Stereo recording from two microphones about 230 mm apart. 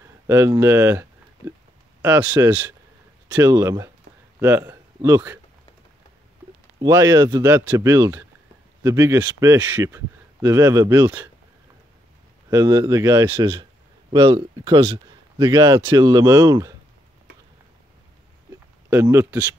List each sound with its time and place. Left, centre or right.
0.3 s speech: centre
6.8 s speech: centre
12.4 s speech: centre
18.9 s speech: centre